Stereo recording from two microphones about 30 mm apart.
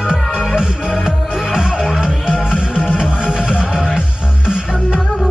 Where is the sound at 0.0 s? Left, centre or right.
Right.